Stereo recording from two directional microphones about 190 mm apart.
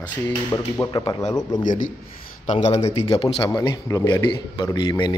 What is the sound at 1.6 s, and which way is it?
A man's voice, 40° left (ahead or behind).